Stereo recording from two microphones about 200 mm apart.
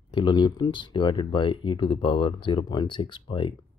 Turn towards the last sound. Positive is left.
turn(degrees=25)  # may be behind; listen again after turning